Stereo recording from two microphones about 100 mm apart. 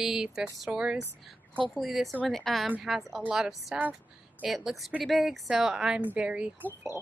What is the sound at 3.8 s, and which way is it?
Speech, 15° right (ahead or behind).